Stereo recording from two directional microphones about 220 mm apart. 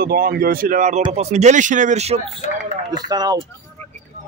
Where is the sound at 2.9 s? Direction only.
20° right (ahead or behind).